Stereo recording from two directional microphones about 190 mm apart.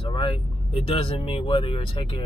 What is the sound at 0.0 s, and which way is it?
Speech, 25° left (ahead or behind).